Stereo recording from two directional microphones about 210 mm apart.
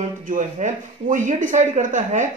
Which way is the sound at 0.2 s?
35° right (ahead or behind).